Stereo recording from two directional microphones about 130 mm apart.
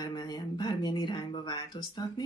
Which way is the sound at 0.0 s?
30° left (ahead or behind).